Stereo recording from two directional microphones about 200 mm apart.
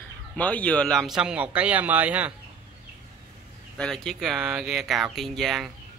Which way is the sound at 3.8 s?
5° left (ahead or behind).